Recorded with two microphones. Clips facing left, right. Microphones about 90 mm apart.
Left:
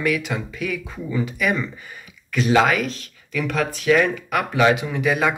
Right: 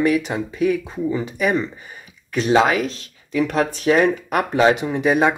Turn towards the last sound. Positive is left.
turn(degrees=-35)  # may be behind; listen again after turning